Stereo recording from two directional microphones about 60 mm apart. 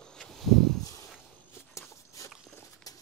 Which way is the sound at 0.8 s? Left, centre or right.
Left.